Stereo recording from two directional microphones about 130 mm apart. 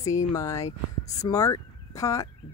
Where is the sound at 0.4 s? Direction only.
25° left (ahead or behind).